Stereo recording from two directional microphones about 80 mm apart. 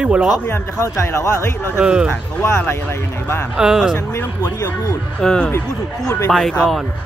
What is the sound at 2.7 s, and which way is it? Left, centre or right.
Speech, left.